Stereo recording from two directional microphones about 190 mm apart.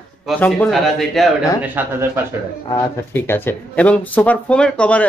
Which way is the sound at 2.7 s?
15° left (ahead or behind).